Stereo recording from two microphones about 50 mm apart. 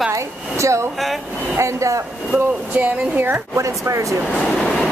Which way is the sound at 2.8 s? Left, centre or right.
Right.